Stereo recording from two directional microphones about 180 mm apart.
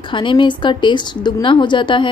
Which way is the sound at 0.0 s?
25° left (ahead or behind).